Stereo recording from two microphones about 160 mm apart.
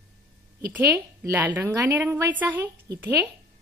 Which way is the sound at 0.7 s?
10° right (ahead or behind).